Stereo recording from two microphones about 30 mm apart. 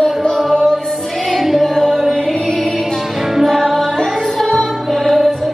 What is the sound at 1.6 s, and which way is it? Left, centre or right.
Music, centre.